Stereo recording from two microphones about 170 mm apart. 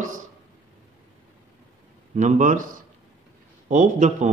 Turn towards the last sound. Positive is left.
turn(degrees=-45)  # may be behind; listen again after turning